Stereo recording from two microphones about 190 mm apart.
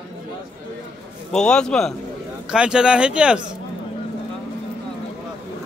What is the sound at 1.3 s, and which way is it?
Speech, 5° left (ahead or behind).